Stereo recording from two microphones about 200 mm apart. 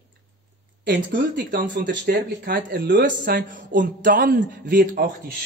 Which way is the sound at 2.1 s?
55° right (ahead or behind).